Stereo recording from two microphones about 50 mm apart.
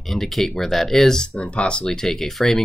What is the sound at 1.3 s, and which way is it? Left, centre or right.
Speech, left.